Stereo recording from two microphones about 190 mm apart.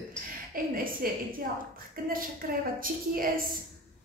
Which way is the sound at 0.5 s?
50° right (ahead or behind).